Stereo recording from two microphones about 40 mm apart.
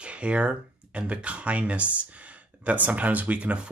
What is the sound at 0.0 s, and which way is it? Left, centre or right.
Speech, right.